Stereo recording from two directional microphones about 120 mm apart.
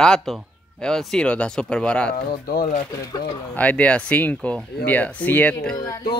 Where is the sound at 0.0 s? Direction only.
5° left (ahead or behind).